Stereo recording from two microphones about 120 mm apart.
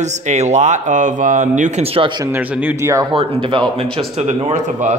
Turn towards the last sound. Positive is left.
turn(degrees=-70)  # may be behind; listen again after turning